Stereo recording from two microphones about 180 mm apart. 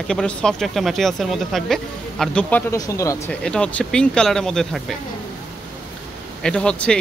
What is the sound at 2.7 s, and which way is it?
Speech, 15° left (ahead or behind).